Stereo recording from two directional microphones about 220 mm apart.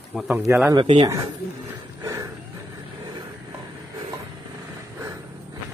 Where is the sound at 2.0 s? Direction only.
15° right (ahead or behind).